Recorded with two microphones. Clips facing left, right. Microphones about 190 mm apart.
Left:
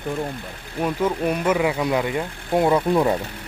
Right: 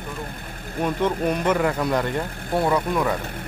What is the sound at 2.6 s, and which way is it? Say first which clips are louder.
Speech: left 4 dB; 25° left (ahead or behind).